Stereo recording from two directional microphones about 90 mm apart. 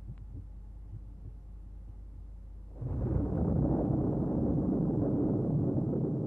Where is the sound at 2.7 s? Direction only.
15° left (ahead or behind).